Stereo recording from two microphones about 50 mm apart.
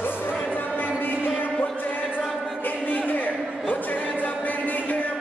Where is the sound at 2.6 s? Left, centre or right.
Left.